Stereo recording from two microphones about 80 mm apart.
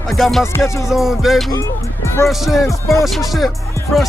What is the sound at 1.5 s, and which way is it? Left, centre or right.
Music, left.